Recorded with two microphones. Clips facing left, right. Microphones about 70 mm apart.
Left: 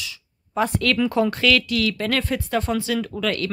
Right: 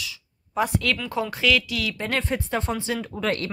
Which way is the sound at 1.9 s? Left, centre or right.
Right.